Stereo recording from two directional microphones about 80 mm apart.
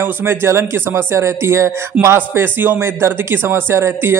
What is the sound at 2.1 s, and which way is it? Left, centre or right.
A man's voice, right.